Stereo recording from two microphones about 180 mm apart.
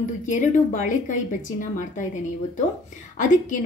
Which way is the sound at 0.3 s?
45° left (ahead or behind).